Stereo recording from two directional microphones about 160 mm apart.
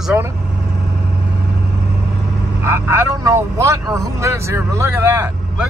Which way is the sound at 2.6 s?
15° right (ahead or behind).